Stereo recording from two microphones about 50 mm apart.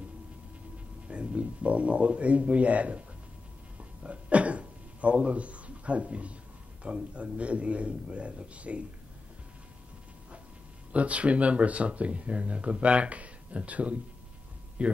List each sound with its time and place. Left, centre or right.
1.0 s speech: right
4.0 s a sound: right
6.8 s speech: right
10.9 s speech: right